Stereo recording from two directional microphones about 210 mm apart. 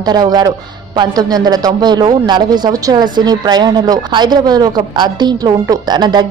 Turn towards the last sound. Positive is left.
turn(degrees=-20)  # may be behind; listen again after turning